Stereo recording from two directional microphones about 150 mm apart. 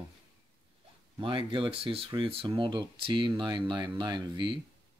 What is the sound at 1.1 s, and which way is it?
Speech, 35° right (ahead or behind).